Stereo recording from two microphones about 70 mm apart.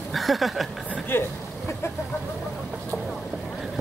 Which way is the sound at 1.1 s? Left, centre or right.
Left.